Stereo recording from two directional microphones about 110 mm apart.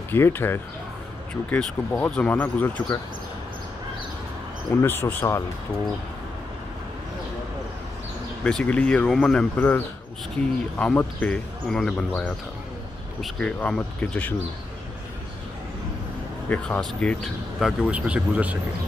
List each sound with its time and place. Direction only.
0.1 s speech: 20° left (ahead or behind)
4.8 s speech: 20° left (ahead or behind)
8.5 s speech: 10° left (ahead or behind)
16.4 s speech: 15° left (ahead or behind)
17.6 s speech: 5° right (ahead or behind)